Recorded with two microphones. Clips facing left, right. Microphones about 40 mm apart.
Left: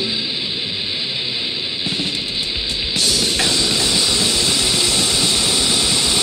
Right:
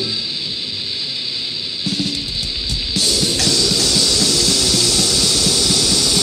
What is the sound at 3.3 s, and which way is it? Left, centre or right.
Music, left.